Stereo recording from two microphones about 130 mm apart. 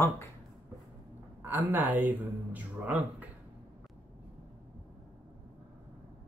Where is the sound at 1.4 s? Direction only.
15° right (ahead or behind).